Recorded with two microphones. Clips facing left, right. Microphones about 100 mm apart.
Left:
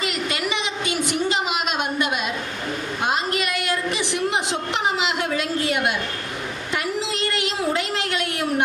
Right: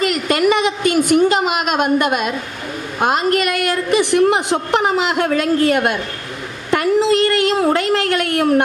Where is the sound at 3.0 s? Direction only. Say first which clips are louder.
Right 9 dB; 55° right (ahead or behind).